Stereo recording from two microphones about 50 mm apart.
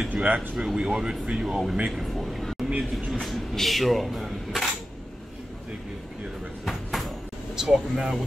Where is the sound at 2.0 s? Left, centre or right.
Centre.